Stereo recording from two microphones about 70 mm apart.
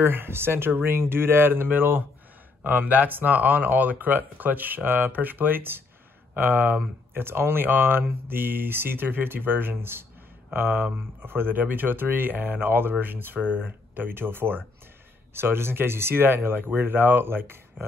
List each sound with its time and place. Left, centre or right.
0.0 s speech: right